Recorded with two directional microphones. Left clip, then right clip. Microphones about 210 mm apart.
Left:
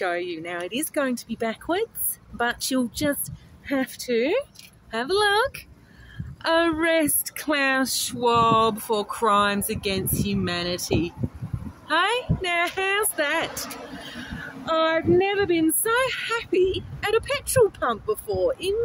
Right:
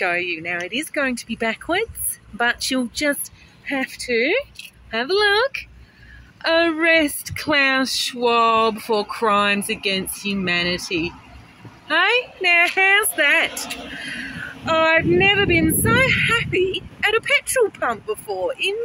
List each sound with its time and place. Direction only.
0.0 s speech: centre (ahead or behind)
4.9 s speech: 10° right (ahead or behind)
12.4 s speech: centre (ahead or behind)